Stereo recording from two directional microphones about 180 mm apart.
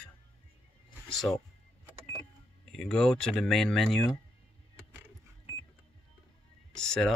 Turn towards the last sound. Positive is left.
turn(degrees=5)  # may be behind; listen again after turning